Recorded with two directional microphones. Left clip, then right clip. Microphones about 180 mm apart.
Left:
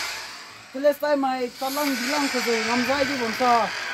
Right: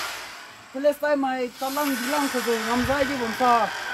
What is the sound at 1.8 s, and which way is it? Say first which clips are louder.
Speech: left 1 dB; 35° right (ahead or behind).